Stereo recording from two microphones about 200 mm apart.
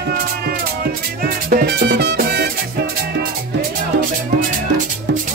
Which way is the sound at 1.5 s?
50° right (ahead or behind).